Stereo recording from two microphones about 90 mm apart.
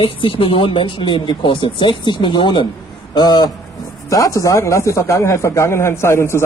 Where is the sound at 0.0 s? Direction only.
85° left; by 3.5 s 50° left (ahead or behind).